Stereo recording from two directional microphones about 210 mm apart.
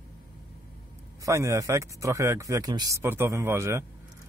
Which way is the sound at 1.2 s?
15° right (ahead or behind).